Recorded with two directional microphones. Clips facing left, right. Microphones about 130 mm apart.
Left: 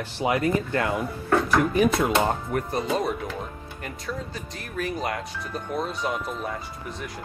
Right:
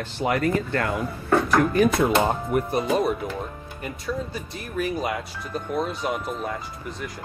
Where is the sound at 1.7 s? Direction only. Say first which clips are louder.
Right 2 dB; 5° left (ahead or behind).